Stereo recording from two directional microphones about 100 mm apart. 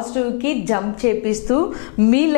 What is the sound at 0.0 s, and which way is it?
A woman's voice, 15° left (ahead or behind).